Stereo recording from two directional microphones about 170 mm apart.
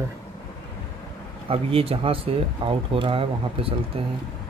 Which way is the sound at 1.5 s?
35° right (ahead or behind).